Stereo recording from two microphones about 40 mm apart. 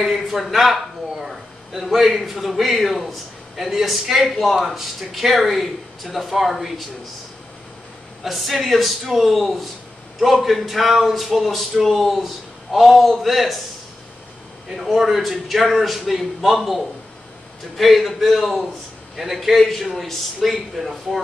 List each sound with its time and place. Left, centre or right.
0.0 s a man's voice: centre
8.2 s a man's voice: centre
14.7 s a man's voice: centre